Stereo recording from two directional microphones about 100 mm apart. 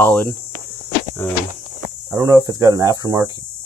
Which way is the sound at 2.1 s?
35° right (ahead or behind).